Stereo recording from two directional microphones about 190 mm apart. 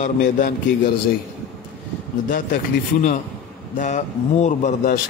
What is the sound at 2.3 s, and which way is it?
Speech, 45° left (ahead or behind).